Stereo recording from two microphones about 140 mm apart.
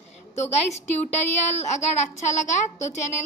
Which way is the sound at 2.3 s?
60° left (ahead or behind).